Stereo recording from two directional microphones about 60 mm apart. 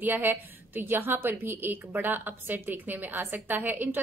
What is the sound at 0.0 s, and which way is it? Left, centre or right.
A woman's voice, right.